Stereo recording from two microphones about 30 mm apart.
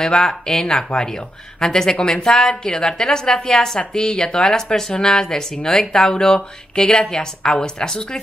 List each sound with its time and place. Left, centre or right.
0.1 s speech: left